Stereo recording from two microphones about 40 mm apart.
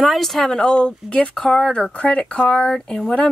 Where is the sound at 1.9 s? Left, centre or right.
Left.